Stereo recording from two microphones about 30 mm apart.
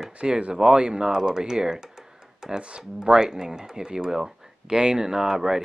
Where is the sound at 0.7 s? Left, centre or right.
Right.